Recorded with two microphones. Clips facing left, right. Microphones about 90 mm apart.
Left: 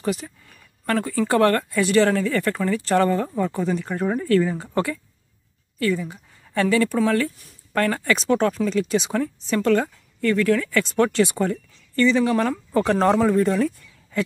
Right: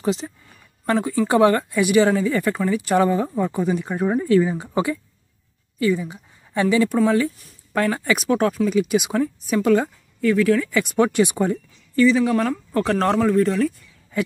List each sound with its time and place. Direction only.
0.0 s a woman's voice: 20° right (ahead or behind); by 13.7 s 5° left (ahead or behind)